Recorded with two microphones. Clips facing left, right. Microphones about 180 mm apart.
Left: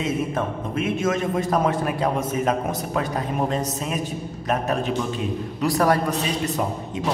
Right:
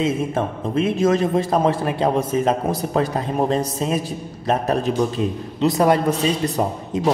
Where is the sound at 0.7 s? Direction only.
35° right (ahead or behind).